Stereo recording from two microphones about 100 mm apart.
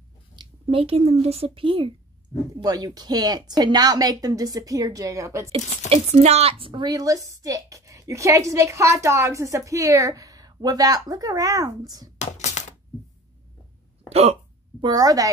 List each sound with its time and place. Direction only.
0.7 s a woman's voice: 70° right (ahead or behind)
2.5 s a woman's voice: 40° right (ahead or behind)
5.5 s a woman's voice: 80° right; by 12.1 s 40° right (ahead or behind)
14.0 s speech: 90° right
14.8 s a woman's voice: 40° right (ahead or behind)